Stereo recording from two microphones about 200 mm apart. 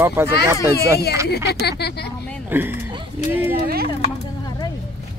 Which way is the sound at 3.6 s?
50° right (ahead or behind).